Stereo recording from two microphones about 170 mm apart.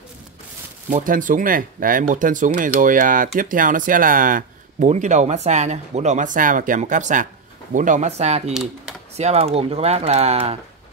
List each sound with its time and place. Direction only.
0.8 s speech: 50° right (ahead or behind)